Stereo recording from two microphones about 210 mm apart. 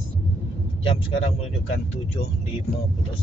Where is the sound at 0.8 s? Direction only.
25° left (ahead or behind).